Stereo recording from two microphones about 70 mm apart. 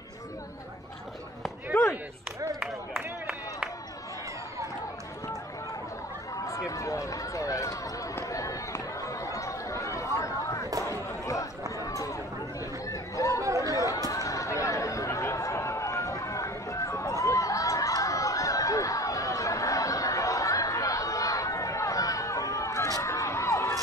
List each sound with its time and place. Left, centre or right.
6.3 s run: left
10.8 s chatter: left
11.8 s a sound: left
12.9 s chatter: left
13.7 s run: left
14.1 s chatter: left